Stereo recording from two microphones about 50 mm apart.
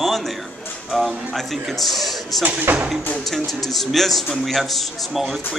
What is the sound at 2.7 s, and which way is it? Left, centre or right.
Speech, right.